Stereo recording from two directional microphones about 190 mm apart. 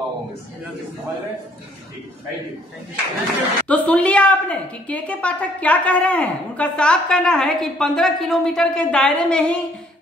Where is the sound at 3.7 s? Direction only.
5° left (ahead or behind).